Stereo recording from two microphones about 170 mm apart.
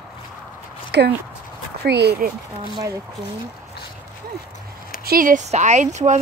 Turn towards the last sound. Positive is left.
turn(degrees=-45)  # may be behind; listen again after turning